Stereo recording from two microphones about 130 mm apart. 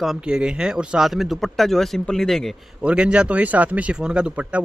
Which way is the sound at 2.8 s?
10° right (ahead or behind).